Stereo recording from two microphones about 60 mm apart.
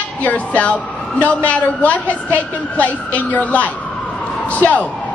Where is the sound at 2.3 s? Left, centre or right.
Left.